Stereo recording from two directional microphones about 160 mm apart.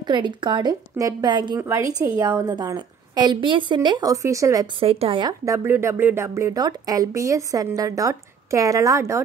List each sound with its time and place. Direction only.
0.0 s speech: 30° right (ahead or behind)
1.6 s a woman's voice: 15° right (ahead or behind)
4.7 s speech: 35° right (ahead or behind)
5.4 s speech: 20° right (ahead or behind)